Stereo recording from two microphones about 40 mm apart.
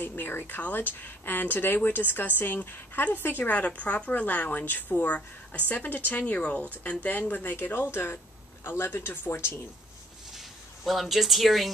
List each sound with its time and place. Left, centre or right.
0.0 s speech: left
3.5 s a woman's voice: left
7.5 s speech: left
7.9 s speech: left
10.3 s speech: centre